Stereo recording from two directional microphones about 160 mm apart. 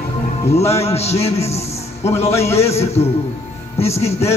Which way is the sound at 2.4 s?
40° left (ahead or behind).